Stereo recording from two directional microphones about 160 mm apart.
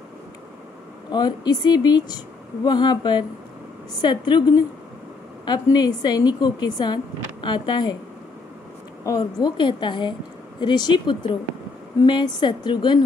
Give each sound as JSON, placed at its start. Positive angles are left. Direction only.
{"t": 1.1, "sound": "speech", "side_deg": 25}
{"t": 9.0, "sound": "speech", "side_deg": 25}